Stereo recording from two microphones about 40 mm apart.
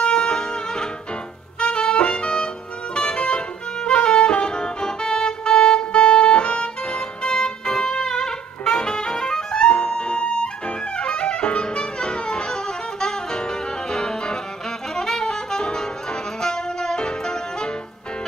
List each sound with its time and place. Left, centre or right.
0.0 s music: left
1.6 s saxophone: left
11.0 s music: left
15.0 s saxophone: centre